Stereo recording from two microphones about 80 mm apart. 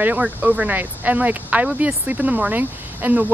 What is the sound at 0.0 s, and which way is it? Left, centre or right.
Speech, right.